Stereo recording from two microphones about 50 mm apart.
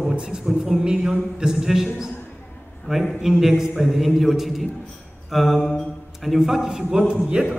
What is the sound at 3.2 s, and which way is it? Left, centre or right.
A man's voice, centre.